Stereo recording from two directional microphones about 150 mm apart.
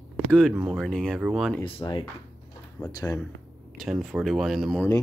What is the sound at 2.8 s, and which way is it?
Speech, 10° left (ahead or behind).